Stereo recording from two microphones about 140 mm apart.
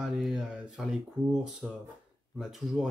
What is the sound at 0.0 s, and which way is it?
Speech, centre (ahead or behind).